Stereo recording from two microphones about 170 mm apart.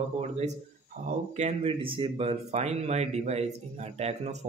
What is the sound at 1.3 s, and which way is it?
Speech, 40° right (ahead or behind).